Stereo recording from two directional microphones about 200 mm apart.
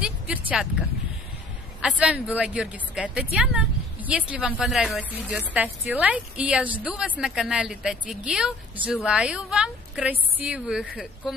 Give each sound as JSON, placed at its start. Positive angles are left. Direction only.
{"t": 0.0, "sound": "a woman's voice", "side_deg": -5}